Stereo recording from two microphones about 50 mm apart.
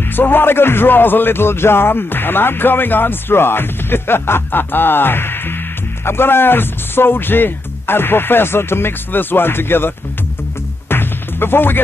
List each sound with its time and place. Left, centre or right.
0.1 s speech: left
10.9 s music: left